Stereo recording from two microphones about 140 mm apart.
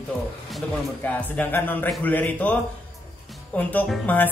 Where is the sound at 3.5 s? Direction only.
10° left (ahead or behind).